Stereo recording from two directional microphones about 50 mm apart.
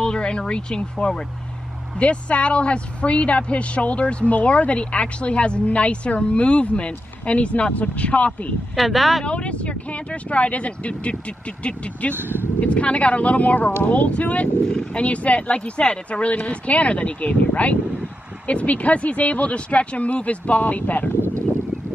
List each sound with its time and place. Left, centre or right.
0.0 s speech: centre
8.7 s speech: centre
9.2 s speech: left
12.2 s speech: right
12.5 s speech: left